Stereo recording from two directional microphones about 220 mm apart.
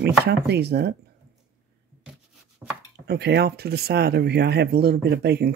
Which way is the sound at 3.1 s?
50° right (ahead or behind).